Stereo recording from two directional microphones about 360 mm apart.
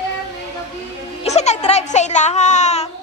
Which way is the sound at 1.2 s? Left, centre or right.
Centre.